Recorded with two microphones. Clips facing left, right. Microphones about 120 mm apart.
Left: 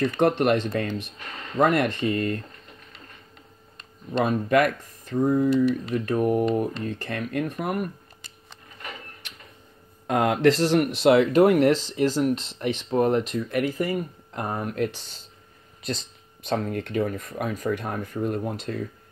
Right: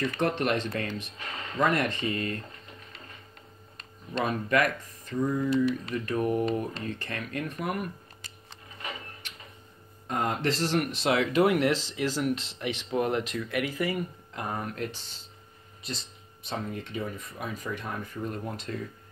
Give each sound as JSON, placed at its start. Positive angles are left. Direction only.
{"t": 0.0, "sound": "speech", "side_deg": 55}
{"t": 4.2, "sound": "speech", "side_deg": 50}
{"t": 6.1, "sound": "speech", "side_deg": 10}
{"t": 7.0, "sound": "speech", "side_deg": 55}
{"t": 10.0, "sound": "speech", "side_deg": 75}
{"t": 10.8, "sound": "speech", "side_deg": 60}
{"t": 16.4, "sound": "speech", "side_deg": 75}